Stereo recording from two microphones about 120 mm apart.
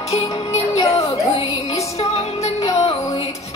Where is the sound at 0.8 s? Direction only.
30° left (ahead or behind).